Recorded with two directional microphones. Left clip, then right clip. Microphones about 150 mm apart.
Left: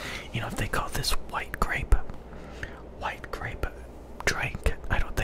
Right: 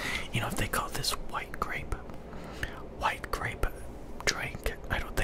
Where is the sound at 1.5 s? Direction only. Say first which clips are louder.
Left 5 dB; 35° left (ahead or behind).